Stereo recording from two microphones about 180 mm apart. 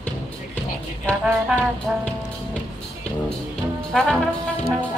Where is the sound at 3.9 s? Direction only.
Centre (ahead or behind).